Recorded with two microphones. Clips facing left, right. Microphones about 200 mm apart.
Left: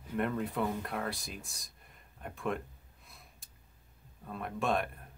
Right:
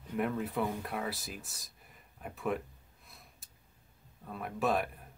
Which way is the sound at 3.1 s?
Centre (ahead or behind).